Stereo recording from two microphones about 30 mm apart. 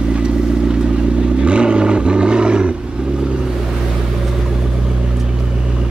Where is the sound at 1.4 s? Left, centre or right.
Right.